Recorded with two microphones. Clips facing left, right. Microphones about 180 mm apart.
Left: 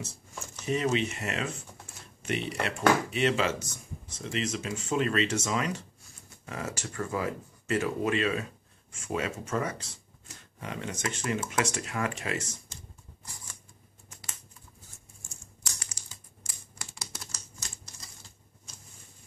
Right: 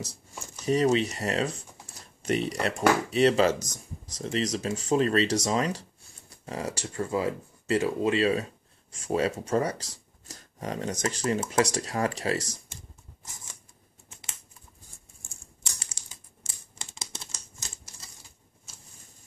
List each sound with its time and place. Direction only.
0.7 s speech: 35° right (ahead or behind)
15.6 s typing: 25° right (ahead or behind)
16.4 s typewriter: 25° right (ahead or behind)
18.7 s a sound: 5° right (ahead or behind)